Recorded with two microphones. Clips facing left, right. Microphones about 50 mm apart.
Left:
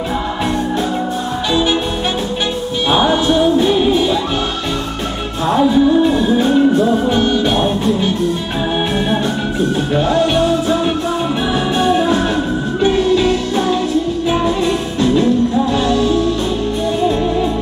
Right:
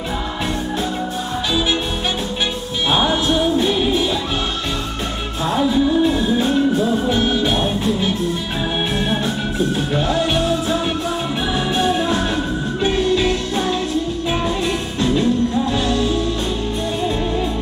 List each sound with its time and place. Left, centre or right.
2.9 s music: centre
5.5 s music: centre